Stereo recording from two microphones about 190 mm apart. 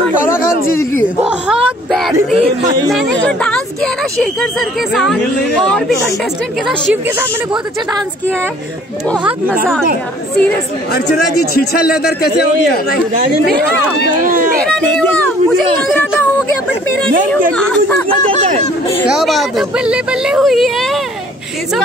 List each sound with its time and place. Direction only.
1.0 s a woman's voice: 5° right (ahead or behind)
2.9 s a woman's voice: centre (ahead or behind)
11.1 s a man's voice: 55° left (ahead or behind)
14.3 s speech: 45° right (ahead or behind)
14.7 s a woman's voice: 5° left (ahead or behind)
19.0 s a woman's voice: centre (ahead or behind)